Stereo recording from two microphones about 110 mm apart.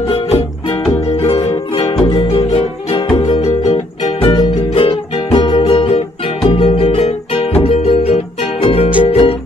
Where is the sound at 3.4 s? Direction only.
75° left (ahead or behind).